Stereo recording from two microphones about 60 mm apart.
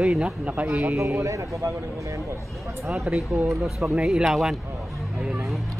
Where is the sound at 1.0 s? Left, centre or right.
Right.